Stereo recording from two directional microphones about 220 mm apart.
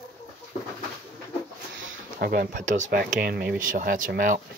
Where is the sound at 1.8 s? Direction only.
60° right (ahead or behind).